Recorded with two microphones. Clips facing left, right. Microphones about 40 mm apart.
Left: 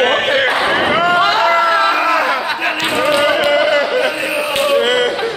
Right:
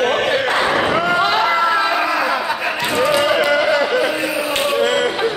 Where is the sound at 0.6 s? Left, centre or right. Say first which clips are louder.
Left 2 dB; left.